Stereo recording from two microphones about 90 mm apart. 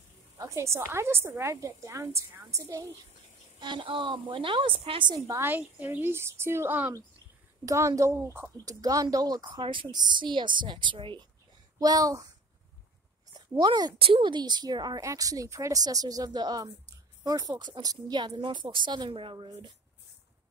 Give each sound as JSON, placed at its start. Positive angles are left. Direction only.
{"t": 0.4, "sound": "a woman's voice", "side_deg": -35}
{"t": 3.5, "sound": "a woman's voice", "side_deg": -60}
{"t": 5.4, "sound": "a woman's voice", "side_deg": -20}
{"t": 8.6, "sound": "a woman's voice", "side_deg": -40}
{"t": 9.5, "sound": "a woman's voice", "side_deg": -65}
{"t": 9.8, "sound": "speech", "side_deg": -55}
{"t": 11.8, "sound": "a woman's voice", "side_deg": -45}
{"t": 13.6, "sound": "a woman's voice", "side_deg": -55}
{"t": 13.9, "sound": "a woman's voice", "side_deg": -80}
{"t": 15.0, "sound": "a woman's voice", "side_deg": -40}